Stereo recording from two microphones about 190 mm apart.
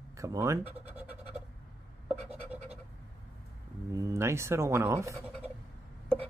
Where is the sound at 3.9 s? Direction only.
15° right (ahead or behind).